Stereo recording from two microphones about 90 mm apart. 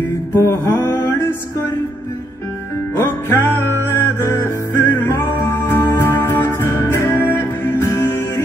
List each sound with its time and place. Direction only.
0.3 s music: 25° left (ahead or behind)
3.0 s music: 25° left (ahead or behind)
4.7 s music: 25° left (ahead or behind)